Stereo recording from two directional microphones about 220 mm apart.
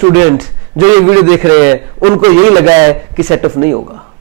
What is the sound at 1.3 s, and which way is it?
Speech, 10° right (ahead or behind).